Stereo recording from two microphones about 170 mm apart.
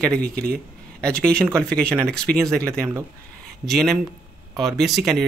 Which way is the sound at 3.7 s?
Centre (ahead or behind).